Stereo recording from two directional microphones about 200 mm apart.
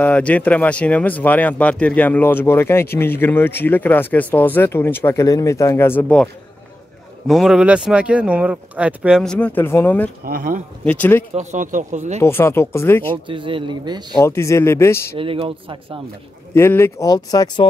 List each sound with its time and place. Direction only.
0.0 s speech: 5° left (ahead or behind)
10.2 s speech: 45° right (ahead or behind)
10.9 s speech: 10° left (ahead or behind)
11.3 s speech: 40° right (ahead or behind)
12.2 s speech: 10° left (ahead or behind)
13.1 s speech: 25° right (ahead or behind)
14.1 s speech: 15° left (ahead or behind)
15.1 s speech: 25° right (ahead or behind)
16.5 s speech: 10° left (ahead or behind)